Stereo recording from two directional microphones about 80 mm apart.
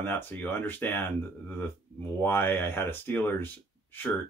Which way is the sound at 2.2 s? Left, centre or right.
Left.